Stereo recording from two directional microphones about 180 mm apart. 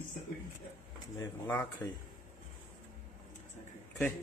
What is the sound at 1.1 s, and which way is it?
Speech, 10° left (ahead or behind).